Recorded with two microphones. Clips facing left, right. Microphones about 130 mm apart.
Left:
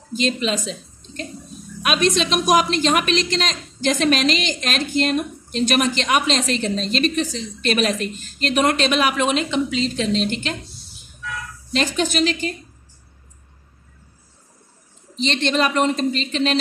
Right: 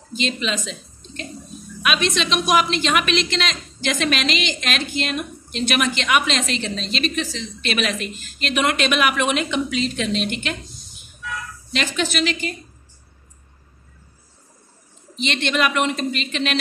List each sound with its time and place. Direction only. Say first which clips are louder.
0.1 s a woman's voice: left 3 dB; 40° left (ahead or behind)
11.7 s a woman's voice: left 3 dB; 40° left (ahead or behind)
15.1 s a woman's voice: left 2 dB; 35° left (ahead or behind)